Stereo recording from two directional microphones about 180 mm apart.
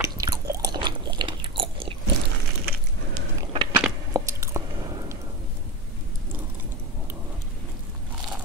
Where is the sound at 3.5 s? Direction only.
25° right (ahead or behind).